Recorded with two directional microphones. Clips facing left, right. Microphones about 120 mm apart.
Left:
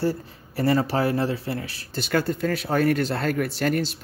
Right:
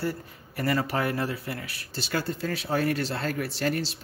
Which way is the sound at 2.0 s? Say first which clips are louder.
Left 6 dB; 55° left (ahead or behind).